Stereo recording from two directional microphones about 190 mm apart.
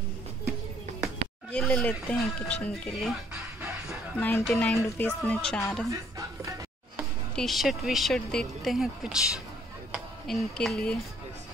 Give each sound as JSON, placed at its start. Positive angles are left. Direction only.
{"t": 1.5, "sound": "speech", "side_deg": 5}
{"t": 4.2, "sound": "speech", "side_deg": 10}
{"t": 5.9, "sound": "music", "side_deg": -15}
{"t": 7.3, "sound": "speech", "side_deg": 0}